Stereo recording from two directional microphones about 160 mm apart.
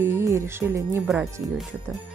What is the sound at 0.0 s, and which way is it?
Music, 15° right (ahead or behind).